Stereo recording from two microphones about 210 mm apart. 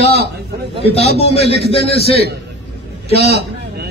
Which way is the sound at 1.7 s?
30° left (ahead or behind).